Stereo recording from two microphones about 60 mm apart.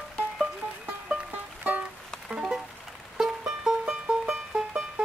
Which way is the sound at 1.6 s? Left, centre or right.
Right.